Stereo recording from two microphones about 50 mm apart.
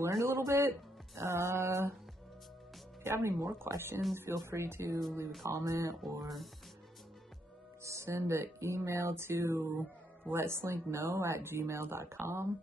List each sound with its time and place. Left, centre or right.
0.0 s a man's voice: right
3.0 s speech: right
5.4 s speech: right
6.0 s speech: centre
7.8 s music: right
8.1 s speech: right